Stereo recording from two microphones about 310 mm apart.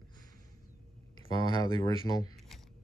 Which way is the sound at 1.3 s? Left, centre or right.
Centre.